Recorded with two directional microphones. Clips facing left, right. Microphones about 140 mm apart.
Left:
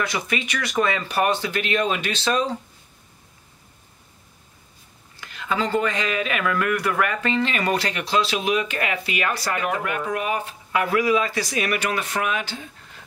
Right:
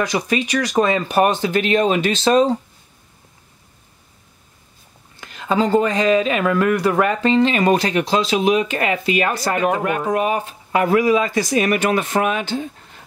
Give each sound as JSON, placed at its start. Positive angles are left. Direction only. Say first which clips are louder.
{"t": 0.0, "sound": "speech", "louder": "right 6 dB", "side_deg": -35}
{"t": 2.3, "sound": "speech", "louder": "right 9 dB", "side_deg": -40}
{"t": 5.2, "sound": "speech", "louder": "right 6 dB", "side_deg": -35}
{"t": 9.3, "sound": "speech", "louder": "right 5 dB", "side_deg": -45}
{"t": 9.6, "sound": "speech", "louder": "right 6 dB", "side_deg": -30}